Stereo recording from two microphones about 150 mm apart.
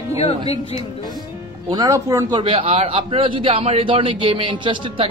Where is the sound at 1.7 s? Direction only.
25° right (ahead or behind).